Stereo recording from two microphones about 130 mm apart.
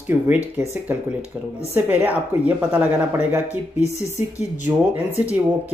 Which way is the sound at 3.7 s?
60° left (ahead or behind).